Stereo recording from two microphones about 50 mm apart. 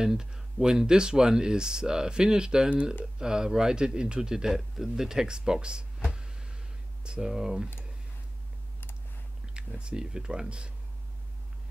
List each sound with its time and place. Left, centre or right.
0.0 s speech: centre
7.1 s speech: centre
9.5 s speech: right